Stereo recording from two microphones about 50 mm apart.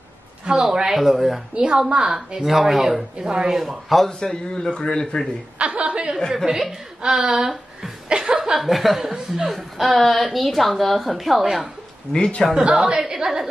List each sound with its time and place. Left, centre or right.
0.5 s speech: centre
0.9 s speech: centre
1.5 s speech: centre
3.6 s speech: centre
4.2 s speech: centre
5.0 s speech: centre
5.6 s a woman's voice: right
6.3 s speech: centre
8.1 s chuckle: centre
8.5 s speech: centre
12.1 s a man's voice: centre
12.6 s speech: centre